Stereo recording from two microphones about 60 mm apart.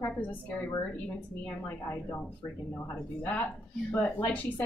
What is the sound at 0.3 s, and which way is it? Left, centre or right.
A woman's voice, left.